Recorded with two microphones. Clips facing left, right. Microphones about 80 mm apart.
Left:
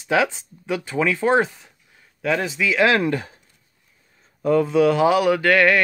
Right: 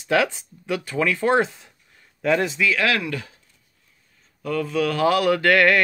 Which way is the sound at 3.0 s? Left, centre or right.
Left.